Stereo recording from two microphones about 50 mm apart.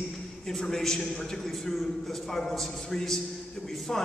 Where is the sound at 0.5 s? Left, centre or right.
Centre.